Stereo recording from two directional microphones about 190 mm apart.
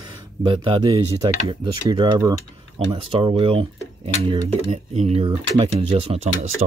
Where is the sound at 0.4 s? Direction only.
25° right (ahead or behind).